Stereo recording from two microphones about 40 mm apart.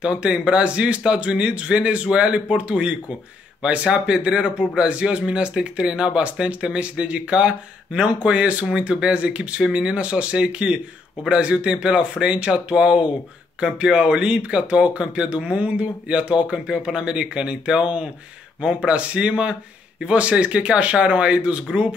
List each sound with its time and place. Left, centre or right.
0.0 s speech: right